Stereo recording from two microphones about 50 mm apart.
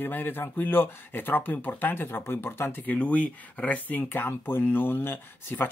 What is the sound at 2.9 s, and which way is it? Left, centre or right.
Speech, left.